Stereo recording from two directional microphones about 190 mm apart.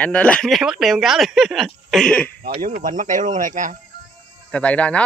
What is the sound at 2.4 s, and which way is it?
Speech, 55° right (ahead or behind).